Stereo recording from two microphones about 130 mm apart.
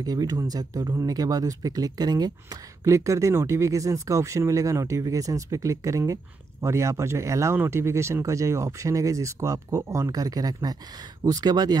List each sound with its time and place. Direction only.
0.0 s speech: 30° right (ahead or behind)